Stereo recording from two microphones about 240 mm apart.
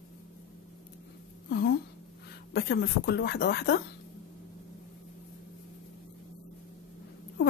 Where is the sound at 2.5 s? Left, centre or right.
Left.